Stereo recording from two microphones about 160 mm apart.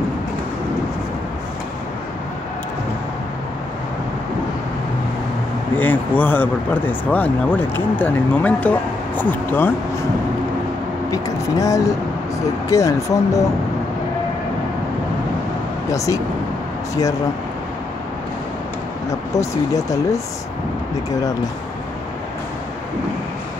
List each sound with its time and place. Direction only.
5.8 s speech: 10° left (ahead or behind)
11.1 s speech: 20° left (ahead or behind)
19.0 s speech: 20° left (ahead or behind)